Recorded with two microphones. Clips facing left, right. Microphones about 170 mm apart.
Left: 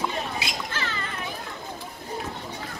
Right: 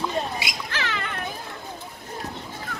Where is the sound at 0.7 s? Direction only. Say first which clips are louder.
Right 2 dB; 75° right (ahead or behind).